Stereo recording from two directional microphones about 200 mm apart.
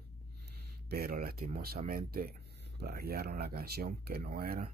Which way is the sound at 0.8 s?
50° right (ahead or behind).